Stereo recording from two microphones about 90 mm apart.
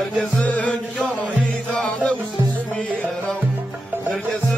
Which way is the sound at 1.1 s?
15° left (ahead or behind).